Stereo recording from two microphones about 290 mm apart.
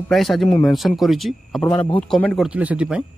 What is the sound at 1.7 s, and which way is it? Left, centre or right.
Speech, centre.